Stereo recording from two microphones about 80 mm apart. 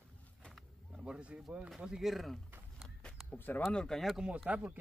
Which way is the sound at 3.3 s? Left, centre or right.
Left.